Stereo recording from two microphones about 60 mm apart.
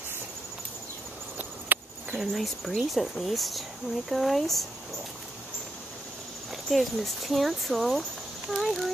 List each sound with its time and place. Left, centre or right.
1.7 s cricket: right
2.1 s speech: centre
6.5 s speech: centre